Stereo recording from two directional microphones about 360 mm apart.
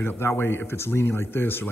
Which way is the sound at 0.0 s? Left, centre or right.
Centre.